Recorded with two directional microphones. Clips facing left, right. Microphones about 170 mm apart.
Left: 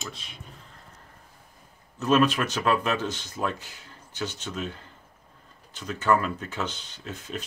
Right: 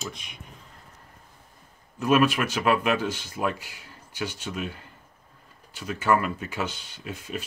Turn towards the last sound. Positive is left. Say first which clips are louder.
# right 1 dB
turn(degrees=-10)  # may be behind; listen again after turning